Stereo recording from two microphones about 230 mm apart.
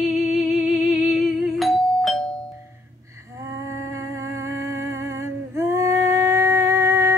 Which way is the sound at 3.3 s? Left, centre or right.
Centre.